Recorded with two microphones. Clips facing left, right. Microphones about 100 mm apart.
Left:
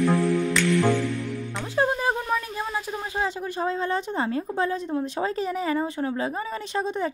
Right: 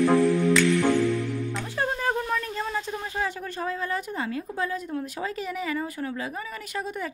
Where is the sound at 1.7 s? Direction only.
20° left (ahead or behind).